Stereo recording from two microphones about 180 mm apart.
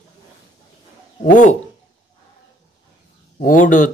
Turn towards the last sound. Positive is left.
turn(degrees=45)  # may be behind; listen again after turning